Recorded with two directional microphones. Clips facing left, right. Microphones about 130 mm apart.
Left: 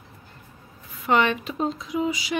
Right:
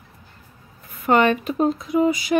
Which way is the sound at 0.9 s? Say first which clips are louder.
Right 4 dB; 45° right (ahead or behind).